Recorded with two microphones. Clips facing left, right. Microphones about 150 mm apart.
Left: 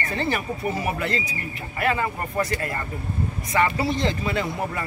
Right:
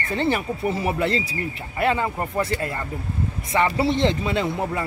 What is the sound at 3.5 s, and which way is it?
Speech, 25° right (ahead or behind).